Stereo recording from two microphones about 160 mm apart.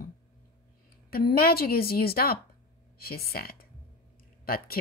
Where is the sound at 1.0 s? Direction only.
70° left (ahead or behind).